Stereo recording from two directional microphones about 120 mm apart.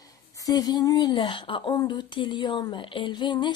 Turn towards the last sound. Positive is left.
turn(degrees=40)  # may be behind; listen again after turning